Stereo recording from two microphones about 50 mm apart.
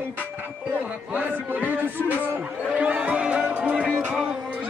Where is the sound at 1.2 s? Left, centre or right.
Right.